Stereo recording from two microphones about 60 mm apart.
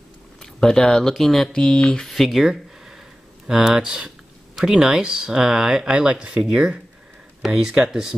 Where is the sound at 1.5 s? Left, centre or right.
Centre.